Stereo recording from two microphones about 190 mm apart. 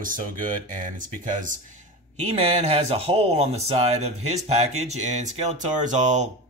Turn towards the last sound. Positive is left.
turn(degrees=-40)  # may be behind; listen again after turning